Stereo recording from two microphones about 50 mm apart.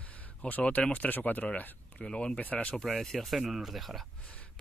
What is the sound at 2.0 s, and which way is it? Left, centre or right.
Speech, centre.